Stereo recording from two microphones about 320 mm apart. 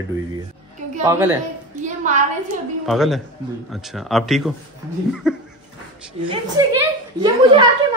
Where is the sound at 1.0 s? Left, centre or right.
Centre.